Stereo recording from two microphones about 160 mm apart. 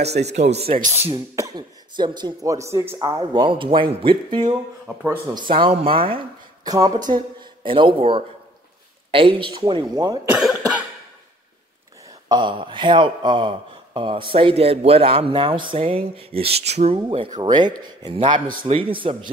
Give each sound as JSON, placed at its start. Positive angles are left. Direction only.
{"t": 0.0, "sound": "speech", "side_deg": -45}
{"t": 1.1, "sound": "speech", "side_deg": -20}
{"t": 3.2, "sound": "speech", "side_deg": -30}
{"t": 4.8, "sound": "speech", "side_deg": -10}
{"t": 5.3, "sound": "speech", "side_deg": -30}
{"t": 6.6, "sound": "speech", "side_deg": -25}
{"t": 10.3, "sound": "cough", "side_deg": -10}
{"t": 12.3, "sound": "speech", "side_deg": -30}
{"t": 17.3, "sound": "speech", "side_deg": -25}